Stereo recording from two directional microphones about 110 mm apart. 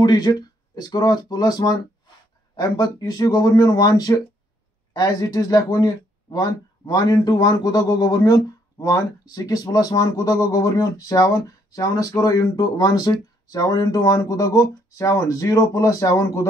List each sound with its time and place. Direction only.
0.0 s speech: 35° left (ahead or behind)